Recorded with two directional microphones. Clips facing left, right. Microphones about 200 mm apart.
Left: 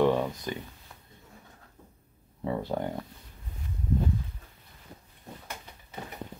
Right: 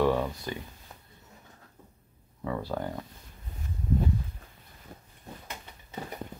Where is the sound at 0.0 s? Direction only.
20° left (ahead or behind).